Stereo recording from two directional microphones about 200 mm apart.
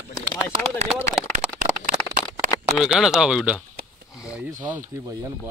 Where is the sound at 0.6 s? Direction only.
Centre (ahead or behind).